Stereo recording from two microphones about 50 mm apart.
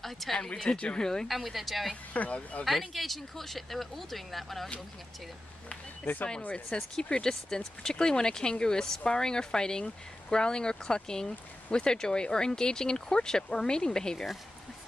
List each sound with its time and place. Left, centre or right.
0.0 s speech: centre
0.4 s speech: centre
1.3 s speech: centre
2.1 s speech: left
2.6 s speech: centre
6.5 s speech: centre